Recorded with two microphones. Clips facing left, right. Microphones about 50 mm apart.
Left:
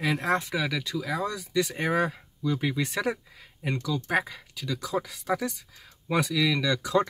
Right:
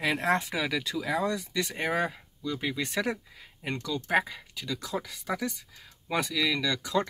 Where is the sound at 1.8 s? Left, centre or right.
Centre.